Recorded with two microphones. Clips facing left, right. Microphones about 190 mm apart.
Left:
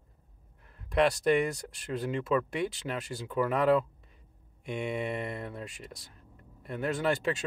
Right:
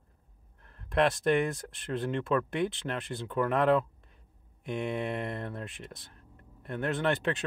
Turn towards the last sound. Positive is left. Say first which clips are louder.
# even
turn(degrees=0)  # may be behind; listen again after turning